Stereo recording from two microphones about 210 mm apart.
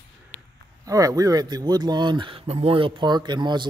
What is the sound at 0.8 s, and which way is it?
Speech, 15° right (ahead or behind).